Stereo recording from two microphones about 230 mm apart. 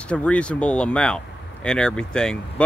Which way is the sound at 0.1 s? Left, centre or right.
Centre.